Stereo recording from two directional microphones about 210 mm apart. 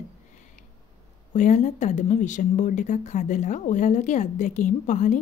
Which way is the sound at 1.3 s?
35° left (ahead or behind).